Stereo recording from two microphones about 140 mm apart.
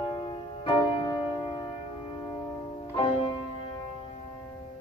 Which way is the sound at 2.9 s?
40° left (ahead or behind).